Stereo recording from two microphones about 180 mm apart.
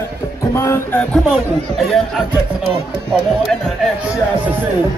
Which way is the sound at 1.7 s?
Centre (ahead or behind).